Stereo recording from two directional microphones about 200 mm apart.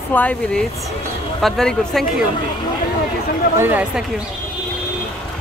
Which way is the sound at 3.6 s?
10° right (ahead or behind).